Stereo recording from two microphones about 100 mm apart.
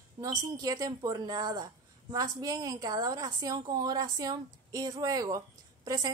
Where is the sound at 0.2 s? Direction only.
35° right (ahead or behind).